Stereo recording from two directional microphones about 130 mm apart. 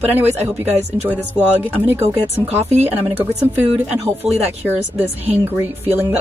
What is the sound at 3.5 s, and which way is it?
Speech, 15° right (ahead or behind).